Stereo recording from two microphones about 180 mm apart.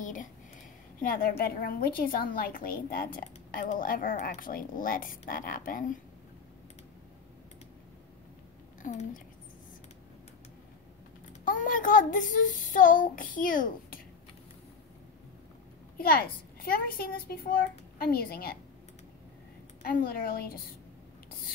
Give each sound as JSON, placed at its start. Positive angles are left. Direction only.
{"t": 0.0, "sound": "a sound", "side_deg": 45}
{"t": 1.0, "sound": "a woman's voice", "side_deg": 50}
{"t": 8.8, "sound": "a woman's voice", "side_deg": 45}
{"t": 11.4, "sound": "a woman's voice", "side_deg": 50}
{"t": 16.0, "sound": "a child's voice", "side_deg": 55}
{"t": 19.8, "sound": "a woman's voice", "side_deg": 55}